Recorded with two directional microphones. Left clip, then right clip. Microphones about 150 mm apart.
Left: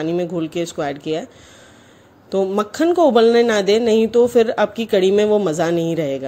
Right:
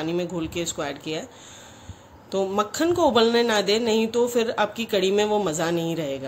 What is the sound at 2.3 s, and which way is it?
Speech, 40° left (ahead or behind).